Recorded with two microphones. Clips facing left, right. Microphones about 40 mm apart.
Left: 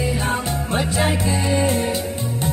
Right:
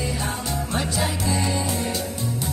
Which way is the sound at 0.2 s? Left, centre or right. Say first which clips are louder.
Left 5 dB; left.